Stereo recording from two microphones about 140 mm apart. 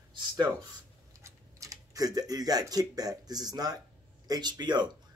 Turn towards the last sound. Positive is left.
turn(degrees=-30)  # may be behind; listen again after turning